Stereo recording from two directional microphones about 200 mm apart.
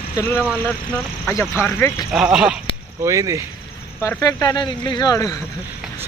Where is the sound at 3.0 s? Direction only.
15° right (ahead or behind).